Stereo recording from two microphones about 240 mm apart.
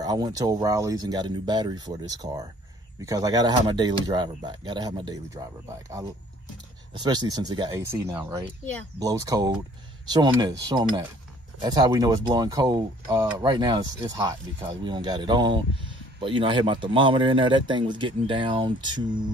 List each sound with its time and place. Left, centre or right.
0.0 s speech: centre